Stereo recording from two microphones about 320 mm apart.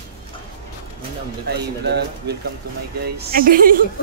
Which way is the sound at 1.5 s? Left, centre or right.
Right.